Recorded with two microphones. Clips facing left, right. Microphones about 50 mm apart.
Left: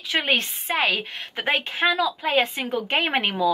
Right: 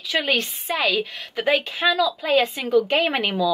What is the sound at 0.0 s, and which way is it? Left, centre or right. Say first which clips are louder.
A woman's voice: right 1 dB; left.